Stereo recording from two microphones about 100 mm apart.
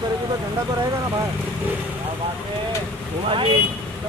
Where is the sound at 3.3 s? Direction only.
60° right (ahead or behind).